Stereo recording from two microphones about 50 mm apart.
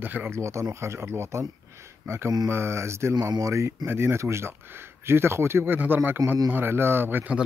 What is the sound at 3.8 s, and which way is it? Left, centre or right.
Speech, right.